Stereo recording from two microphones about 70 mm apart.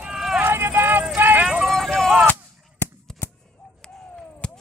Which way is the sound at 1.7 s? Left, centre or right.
Centre.